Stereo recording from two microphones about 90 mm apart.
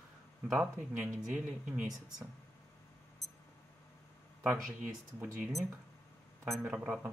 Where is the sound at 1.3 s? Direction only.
10° right (ahead or behind).